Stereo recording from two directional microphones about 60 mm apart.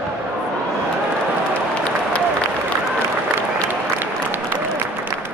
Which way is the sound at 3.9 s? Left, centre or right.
Right.